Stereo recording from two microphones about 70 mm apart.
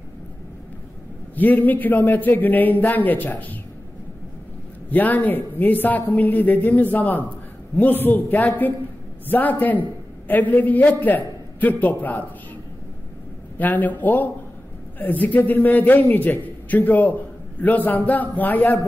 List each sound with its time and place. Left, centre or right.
1.3 s a man's voice: left
4.9 s a man's voice: left
13.6 s a man's voice: left